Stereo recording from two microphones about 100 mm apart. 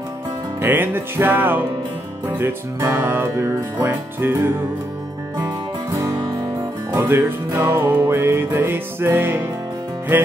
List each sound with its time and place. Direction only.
0.6 s music: 20° right (ahead or behind)
6.9 s music: 20° right (ahead or behind)